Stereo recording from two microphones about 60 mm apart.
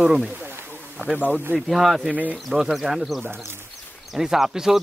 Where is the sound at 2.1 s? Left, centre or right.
Right.